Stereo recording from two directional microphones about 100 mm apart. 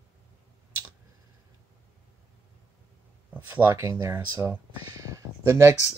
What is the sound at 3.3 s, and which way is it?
Speech, 20° right (ahead or behind).